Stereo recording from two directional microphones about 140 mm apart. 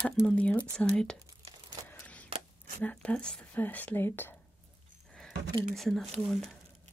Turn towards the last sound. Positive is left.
turn(degrees=0)  # may be behind; listen again after turning